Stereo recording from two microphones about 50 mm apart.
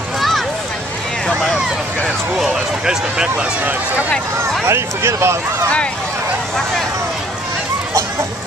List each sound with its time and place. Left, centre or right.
2.3 s speech: centre
4.4 s speech: right